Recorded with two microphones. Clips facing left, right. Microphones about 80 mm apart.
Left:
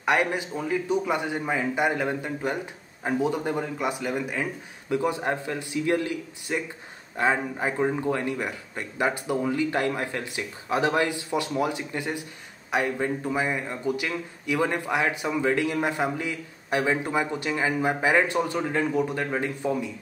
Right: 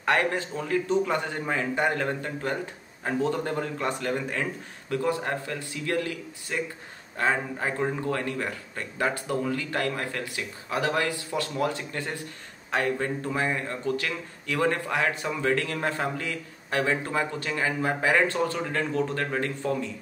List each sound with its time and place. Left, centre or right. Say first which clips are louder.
0.0 s a man's voice: left 1 dB; centre